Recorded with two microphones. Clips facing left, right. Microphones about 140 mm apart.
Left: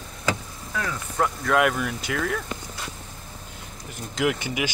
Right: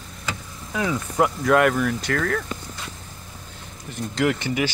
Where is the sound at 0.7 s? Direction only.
10° right (ahead or behind).